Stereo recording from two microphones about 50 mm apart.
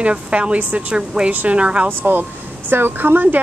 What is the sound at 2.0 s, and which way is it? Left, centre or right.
Speech, right.